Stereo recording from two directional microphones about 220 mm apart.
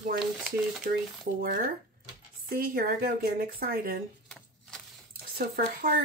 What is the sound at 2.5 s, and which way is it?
Speech, 40° right (ahead or behind).